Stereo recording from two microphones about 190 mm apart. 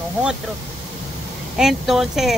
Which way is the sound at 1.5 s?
Centre (ahead or behind).